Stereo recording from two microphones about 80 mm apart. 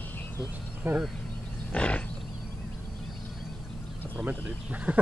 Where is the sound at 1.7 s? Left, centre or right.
Centre.